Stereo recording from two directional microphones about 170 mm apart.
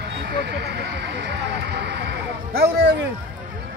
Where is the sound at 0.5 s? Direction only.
75° right (ahead or behind).